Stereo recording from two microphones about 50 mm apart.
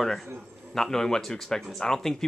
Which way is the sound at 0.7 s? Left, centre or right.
Centre.